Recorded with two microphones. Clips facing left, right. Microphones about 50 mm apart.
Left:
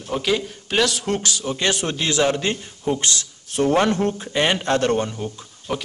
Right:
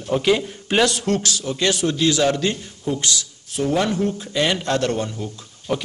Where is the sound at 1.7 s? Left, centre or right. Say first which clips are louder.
Right 3 dB; left.